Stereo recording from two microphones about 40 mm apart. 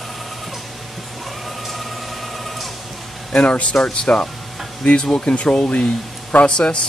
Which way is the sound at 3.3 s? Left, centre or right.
Left.